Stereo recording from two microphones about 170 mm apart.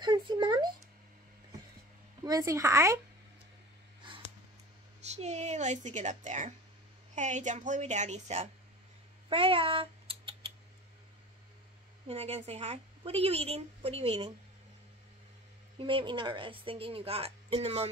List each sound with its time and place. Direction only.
0.0 s a sound: 25° right (ahead or behind)
2.2 s speech: 20° right (ahead or behind)
5.0 s speech: 40° right (ahead or behind)
9.3 s rodents: 30° right (ahead or behind)
12.1 s a woman's voice: 35° right (ahead or behind)
15.8 s a woman's voice: 30° right (ahead or behind)